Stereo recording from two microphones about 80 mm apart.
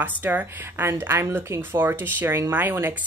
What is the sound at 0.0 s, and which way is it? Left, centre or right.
Speech, right.